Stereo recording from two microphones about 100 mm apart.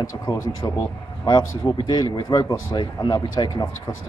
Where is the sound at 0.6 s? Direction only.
35° left (ahead or behind).